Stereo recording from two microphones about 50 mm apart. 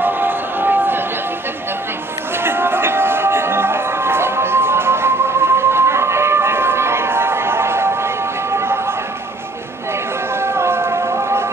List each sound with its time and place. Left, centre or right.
0.0 s a sound: right
2.4 s music: right
10.4 s music: right